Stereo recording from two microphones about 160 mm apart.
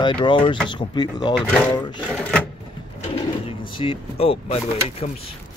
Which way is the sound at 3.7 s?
35° left (ahead or behind).